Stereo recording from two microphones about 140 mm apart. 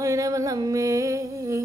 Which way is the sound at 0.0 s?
25° right (ahead or behind).